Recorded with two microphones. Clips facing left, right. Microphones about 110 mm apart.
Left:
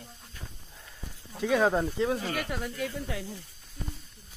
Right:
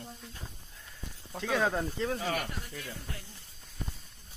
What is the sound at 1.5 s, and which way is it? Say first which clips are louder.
Speech: left 5 dB; 20° left (ahead or behind).